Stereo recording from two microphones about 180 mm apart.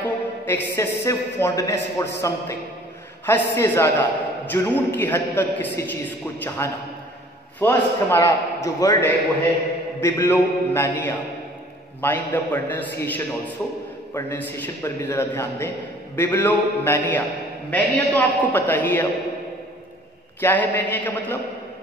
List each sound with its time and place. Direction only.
0.0 s a man's voice: 15° left (ahead or behind)
9.9 s a man's voice: 15° left (ahead or behind)
20.3 s a man's voice: 10° left (ahead or behind)